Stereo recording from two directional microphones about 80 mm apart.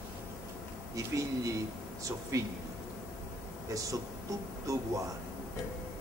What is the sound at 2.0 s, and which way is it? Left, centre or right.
Speech, right.